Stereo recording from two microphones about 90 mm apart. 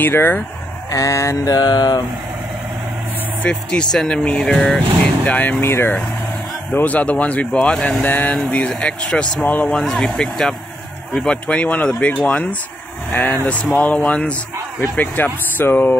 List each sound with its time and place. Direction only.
0.0 s speech: 25° left (ahead or behind)
0.8 s mantra: 40° left (ahead or behind)
3.4 s speech: 10° left (ahead or behind)
9.8 s speech: 5° left (ahead or behind); by 16.0 s 20° left (ahead or behind)